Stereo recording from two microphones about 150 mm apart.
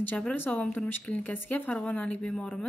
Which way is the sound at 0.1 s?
10° left (ahead or behind).